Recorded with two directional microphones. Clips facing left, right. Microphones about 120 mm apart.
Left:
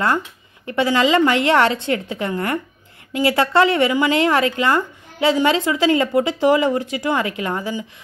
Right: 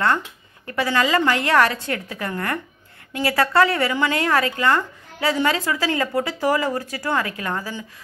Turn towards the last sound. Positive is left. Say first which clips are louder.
# left 4 dB
turn(degrees=20)  # may be behind; listen again after turning